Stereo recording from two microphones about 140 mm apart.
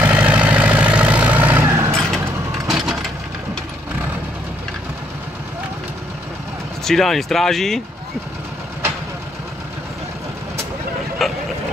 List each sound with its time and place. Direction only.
0.0 s vehicle: 10° right (ahead or behind)
2.0 s a sound: centre (ahead or behind)
6.8 s speech: centre (ahead or behind)
11.2 s vehicle: centre (ahead or behind)